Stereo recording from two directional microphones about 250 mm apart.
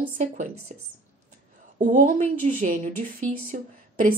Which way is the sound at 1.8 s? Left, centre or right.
Right.